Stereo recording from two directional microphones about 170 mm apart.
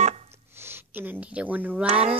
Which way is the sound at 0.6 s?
10° right (ahead or behind).